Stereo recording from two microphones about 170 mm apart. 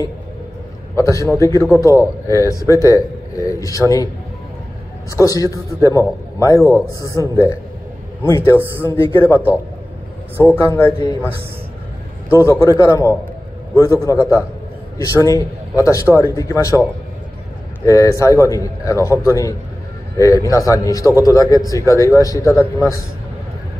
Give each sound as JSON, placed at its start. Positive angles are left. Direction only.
{"t": 0.9, "sound": "a man's voice", "side_deg": 20}
{"t": 5.1, "sound": "a man's voice", "side_deg": 20}
{"t": 10.6, "sound": "a man's voice", "side_deg": 15}
{"t": 12.4, "sound": "a man's voice", "side_deg": 20}
{"t": 17.8, "sound": "a man's voice", "side_deg": 20}